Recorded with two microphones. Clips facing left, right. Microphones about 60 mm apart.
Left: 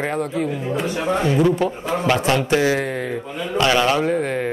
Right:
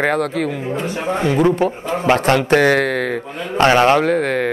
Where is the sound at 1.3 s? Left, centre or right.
Right.